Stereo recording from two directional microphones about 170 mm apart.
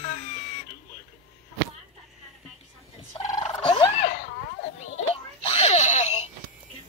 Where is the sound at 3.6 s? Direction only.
30° left (ahead or behind).